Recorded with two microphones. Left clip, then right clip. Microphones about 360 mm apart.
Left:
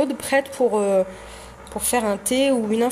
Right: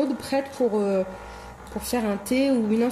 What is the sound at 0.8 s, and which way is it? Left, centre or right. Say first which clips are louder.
Speech: left 5 dB; left.